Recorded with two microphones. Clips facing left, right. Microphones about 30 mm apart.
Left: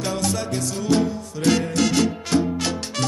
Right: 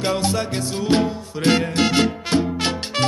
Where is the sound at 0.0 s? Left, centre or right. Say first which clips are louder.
Right 3 dB; right.